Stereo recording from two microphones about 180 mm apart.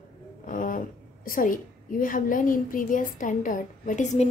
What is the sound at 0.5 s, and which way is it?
A woman's voice, 50° left (ahead or behind).